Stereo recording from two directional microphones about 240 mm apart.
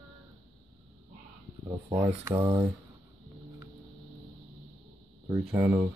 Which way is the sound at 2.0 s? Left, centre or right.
Centre.